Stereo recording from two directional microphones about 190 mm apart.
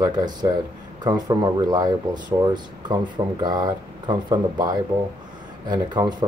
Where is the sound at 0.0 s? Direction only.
20° right (ahead or behind).